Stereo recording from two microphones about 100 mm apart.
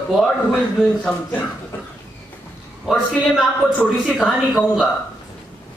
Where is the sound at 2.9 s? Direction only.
Centre (ahead or behind).